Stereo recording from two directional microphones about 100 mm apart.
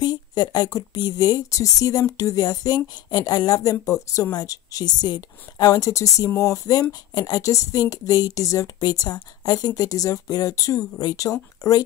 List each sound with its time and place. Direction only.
0.0 s speech: 40° left (ahead or behind)